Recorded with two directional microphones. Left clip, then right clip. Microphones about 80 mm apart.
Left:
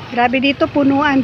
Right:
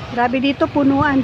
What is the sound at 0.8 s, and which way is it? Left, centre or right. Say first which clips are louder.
Speech: left 2 dB; centre.